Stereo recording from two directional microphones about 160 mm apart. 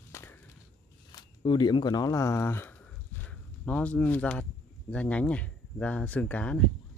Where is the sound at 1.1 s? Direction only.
30° left (ahead or behind).